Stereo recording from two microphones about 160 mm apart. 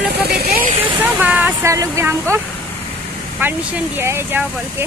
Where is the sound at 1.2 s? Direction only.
10° right (ahead or behind).